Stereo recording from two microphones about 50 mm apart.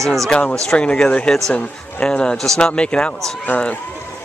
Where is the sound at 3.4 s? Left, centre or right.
Left.